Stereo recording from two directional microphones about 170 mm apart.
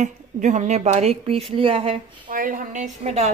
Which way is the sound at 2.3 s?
50° right (ahead or behind).